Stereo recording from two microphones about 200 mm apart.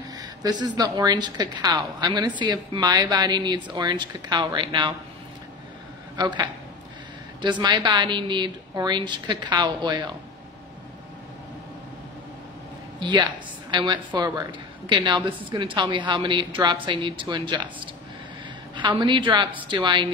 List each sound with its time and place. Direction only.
0.2 s a woman's voice: 20° right (ahead or behind)
6.1 s speech: 20° right (ahead or behind)
7.4 s a woman's voice: 20° right (ahead or behind)
13.0 s a woman's voice: 20° right (ahead or behind)